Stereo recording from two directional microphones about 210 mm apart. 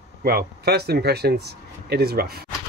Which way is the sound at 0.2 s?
45° right (ahead or behind).